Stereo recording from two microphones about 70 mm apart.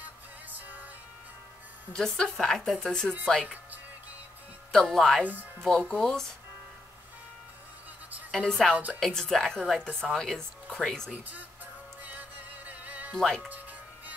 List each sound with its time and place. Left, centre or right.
0.5 s music: right
1.9 s speech: centre
4.7 s speech: centre
5.2 s speech: right
5.6 s speech: centre
8.3 s a woman's voice: centre
12.0 s music: right
13.2 s speech: centre
13.5 s music: right